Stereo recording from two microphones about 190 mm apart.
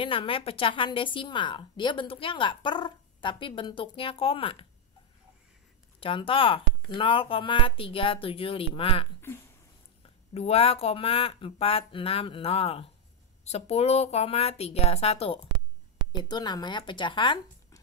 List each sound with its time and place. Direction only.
0.0 s a woman's voice: 25° left (ahead or behind)
5.9 s a woman's voice: 25° left (ahead or behind)
10.3 s a woman's voice: 35° left (ahead or behind)